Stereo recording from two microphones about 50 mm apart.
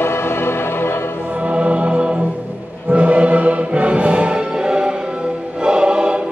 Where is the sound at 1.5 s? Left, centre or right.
Right.